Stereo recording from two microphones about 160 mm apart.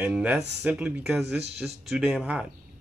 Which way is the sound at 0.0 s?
10° right (ahead or behind).